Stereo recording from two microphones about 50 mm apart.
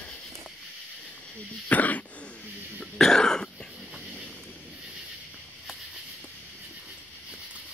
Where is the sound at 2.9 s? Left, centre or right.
Centre.